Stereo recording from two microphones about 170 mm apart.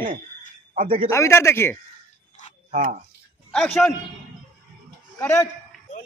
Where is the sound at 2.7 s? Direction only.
50° right (ahead or behind).